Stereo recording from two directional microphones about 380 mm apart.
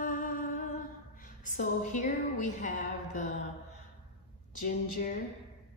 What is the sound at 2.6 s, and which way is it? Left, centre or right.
Speech, centre.